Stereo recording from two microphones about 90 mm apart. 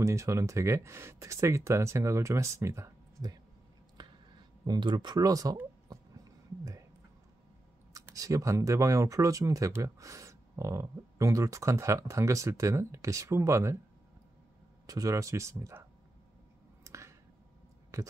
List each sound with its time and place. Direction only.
0.0 s speech: 35° right (ahead or behind)
4.6 s speech: 60° right (ahead or behind); by 5.6 s 45° right (ahead or behind)
5.9 s a sound: 40° right (ahead or behind)
8.0 s speech: 35° right (ahead or behind)
14.9 s speech: 40° right (ahead or behind)
16.8 s a sound: 30° right (ahead or behind)
17.9 s speech: 35° right (ahead or behind)